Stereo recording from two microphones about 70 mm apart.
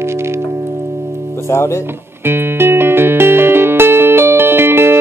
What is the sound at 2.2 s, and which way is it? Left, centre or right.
Music, right.